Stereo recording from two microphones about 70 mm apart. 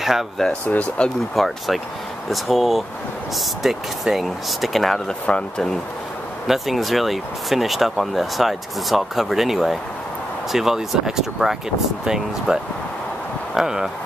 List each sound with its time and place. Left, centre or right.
0.7 s speech: centre
1.3 s speech: centre
5.2 s speech: centre
6.4 s speech: centre
13.6 s speech: centre